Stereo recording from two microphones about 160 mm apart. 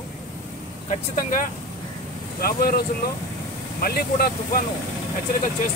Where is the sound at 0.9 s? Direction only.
55° left (ahead or behind).